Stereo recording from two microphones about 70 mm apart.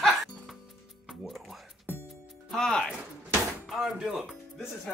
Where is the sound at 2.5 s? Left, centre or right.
Centre.